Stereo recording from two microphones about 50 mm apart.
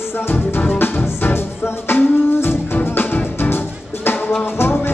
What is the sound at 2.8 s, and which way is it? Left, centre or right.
Music, left.